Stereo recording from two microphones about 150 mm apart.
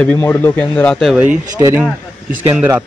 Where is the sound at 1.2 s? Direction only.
10° right (ahead or behind).